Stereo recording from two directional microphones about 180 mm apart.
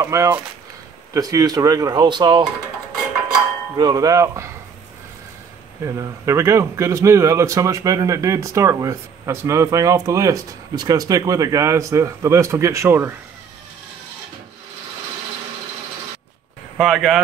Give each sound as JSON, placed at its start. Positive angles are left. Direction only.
{"t": 0.0, "sound": "speech", "side_deg": -15}
{"t": 3.7, "sound": "speech", "side_deg": -20}
{"t": 5.8, "sound": "speech", "side_deg": -15}
{"t": 16.7, "sound": "speech", "side_deg": 0}